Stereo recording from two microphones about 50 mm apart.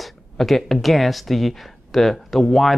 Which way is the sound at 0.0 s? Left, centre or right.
Centre.